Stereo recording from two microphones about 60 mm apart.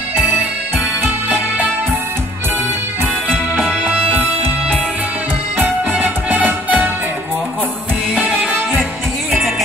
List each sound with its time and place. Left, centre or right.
5.6 s music: right
8.1 s music: right